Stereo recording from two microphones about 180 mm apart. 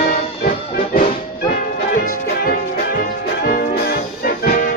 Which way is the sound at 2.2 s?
55° left (ahead or behind).